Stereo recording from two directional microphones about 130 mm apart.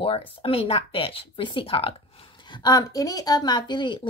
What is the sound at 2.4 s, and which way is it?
A woman's voice, 35° left (ahead or behind).